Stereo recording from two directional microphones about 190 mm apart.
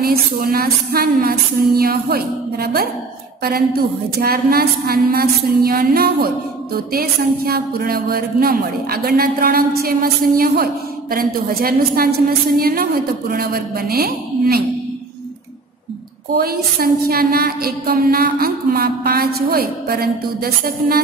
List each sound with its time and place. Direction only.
0.0 s a woman's voice: 50° right (ahead or behind)
4.2 s a woman's voice: 55° right (ahead or behind)
16.3 s a woman's voice: 55° right (ahead or behind)